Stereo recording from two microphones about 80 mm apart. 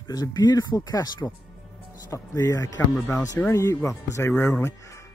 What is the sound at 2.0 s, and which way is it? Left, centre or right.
Speech, left.